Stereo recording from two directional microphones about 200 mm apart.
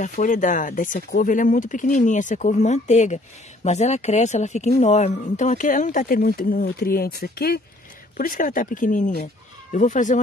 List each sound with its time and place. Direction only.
0.0 s a woman's voice: 40° left (ahead or behind)